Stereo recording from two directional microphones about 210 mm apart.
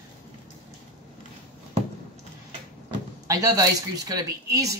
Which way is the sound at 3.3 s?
15° right (ahead or behind).